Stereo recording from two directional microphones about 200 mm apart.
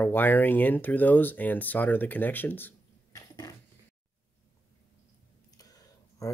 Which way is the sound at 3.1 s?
15° left (ahead or behind).